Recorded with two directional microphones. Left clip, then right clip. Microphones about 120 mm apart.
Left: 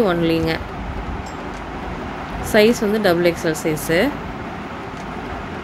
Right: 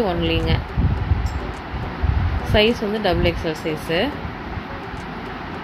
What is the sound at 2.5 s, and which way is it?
Speech, 35° left (ahead or behind).